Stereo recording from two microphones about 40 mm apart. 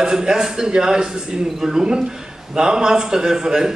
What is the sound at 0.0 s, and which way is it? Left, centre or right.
A man's voice, centre.